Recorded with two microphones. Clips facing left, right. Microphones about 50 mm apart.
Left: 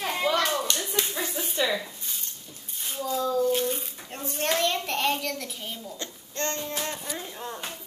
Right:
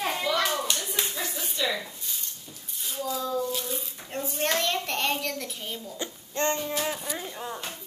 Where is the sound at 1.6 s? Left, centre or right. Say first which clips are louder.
Left 2 dB; left.